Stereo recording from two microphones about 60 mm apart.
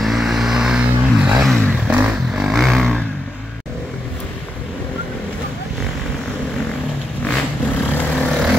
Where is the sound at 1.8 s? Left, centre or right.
Right.